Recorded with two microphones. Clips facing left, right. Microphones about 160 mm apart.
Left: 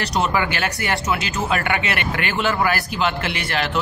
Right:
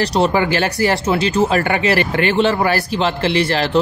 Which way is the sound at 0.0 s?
30° right (ahead or behind).